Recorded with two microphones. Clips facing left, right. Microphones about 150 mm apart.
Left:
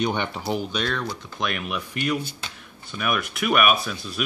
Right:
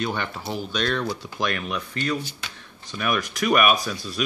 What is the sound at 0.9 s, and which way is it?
Speech, centre (ahead or behind).